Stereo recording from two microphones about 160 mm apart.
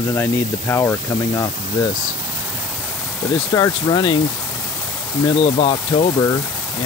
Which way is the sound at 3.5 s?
25° left (ahead or behind).